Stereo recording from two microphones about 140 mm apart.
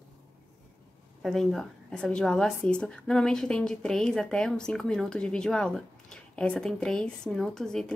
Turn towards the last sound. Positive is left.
turn(degrees=5)  # may be behind; listen again after turning